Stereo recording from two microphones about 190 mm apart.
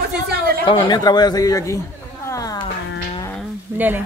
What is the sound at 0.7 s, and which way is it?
Speech, 25° left (ahead or behind).